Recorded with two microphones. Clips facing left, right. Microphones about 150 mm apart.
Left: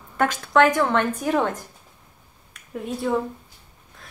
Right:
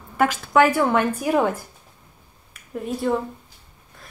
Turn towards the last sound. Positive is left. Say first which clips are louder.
# right 1 dB
turn(degrees=0)  # may be behind; listen again after turning